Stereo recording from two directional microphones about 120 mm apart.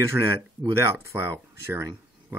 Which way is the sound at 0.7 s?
20° right (ahead or behind).